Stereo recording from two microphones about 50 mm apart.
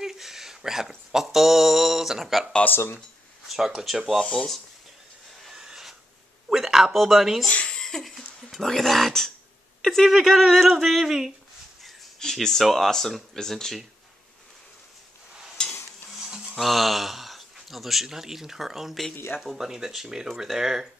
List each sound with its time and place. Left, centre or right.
0.0 s a sound: centre
2.6 s speech: left
3.4 s speech: centre
5.5 s a sound: centre
6.5 s speech: centre
7.4 s a sound: left
7.8 s music: centre
9.8 s a sound: centre
10.0 s speech: centre
11.8 s speech: centre
15.6 s stir: centre
16.5 s speech: centre
19.1 s speech: left
19.4 s speech: centre